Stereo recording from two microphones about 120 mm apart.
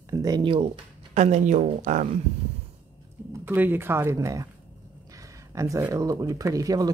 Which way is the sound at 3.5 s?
15° right (ahead or behind).